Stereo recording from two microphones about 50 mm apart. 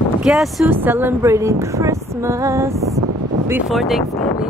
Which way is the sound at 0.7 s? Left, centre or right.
Right.